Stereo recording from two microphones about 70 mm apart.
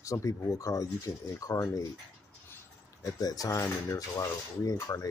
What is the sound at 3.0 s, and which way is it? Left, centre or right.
Speech, left.